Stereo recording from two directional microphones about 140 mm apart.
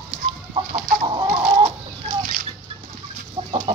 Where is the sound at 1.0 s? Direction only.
35° right (ahead or behind).